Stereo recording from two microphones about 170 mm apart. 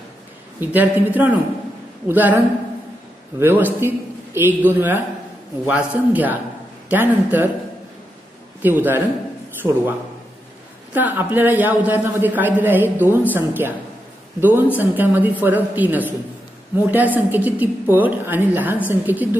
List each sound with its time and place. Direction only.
0.6 s a man's voice: 10° right (ahead or behind)
8.6 s a man's voice: 10° right (ahead or behind)